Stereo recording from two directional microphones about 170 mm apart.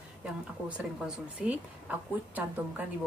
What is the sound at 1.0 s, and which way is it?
A woman's voice, 5° right (ahead or behind).